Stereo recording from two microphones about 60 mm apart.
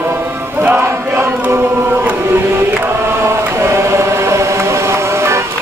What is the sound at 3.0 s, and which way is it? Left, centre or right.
Chant, right.